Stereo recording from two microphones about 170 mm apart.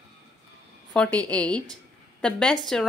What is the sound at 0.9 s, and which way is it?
A woman's voice, 5° left (ahead or behind).